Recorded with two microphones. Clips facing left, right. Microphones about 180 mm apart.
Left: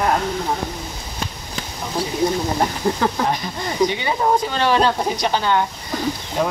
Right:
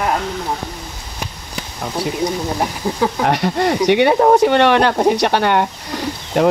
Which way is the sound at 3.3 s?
70° right (ahead or behind).